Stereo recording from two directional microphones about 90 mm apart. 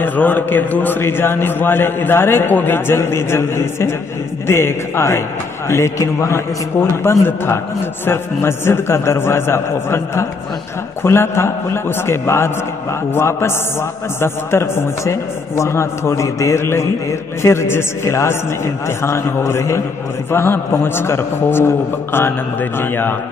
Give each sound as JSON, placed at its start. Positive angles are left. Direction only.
{"t": 0.0, "sound": "a man's voice", "side_deg": 20}